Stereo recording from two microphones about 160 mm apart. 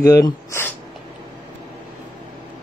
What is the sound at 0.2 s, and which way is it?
Speech, 15° left (ahead or behind).